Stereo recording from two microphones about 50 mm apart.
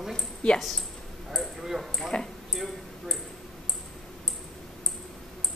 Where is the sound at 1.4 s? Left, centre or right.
Centre.